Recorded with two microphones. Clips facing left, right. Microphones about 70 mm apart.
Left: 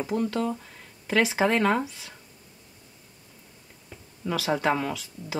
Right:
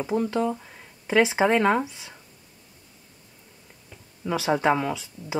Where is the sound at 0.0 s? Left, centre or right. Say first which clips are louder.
Right 2 dB; centre.